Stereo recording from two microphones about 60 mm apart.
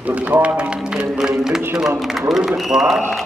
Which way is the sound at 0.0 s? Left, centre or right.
Right.